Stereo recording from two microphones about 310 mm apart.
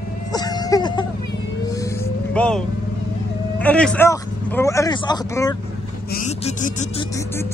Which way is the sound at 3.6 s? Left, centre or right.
Centre.